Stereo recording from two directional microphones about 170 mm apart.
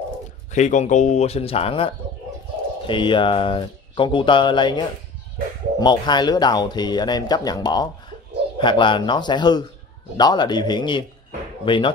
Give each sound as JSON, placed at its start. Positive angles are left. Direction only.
{"t": 0.5, "sound": "speech", "side_deg": 45}
{"t": 2.9, "sound": "speech", "side_deg": 30}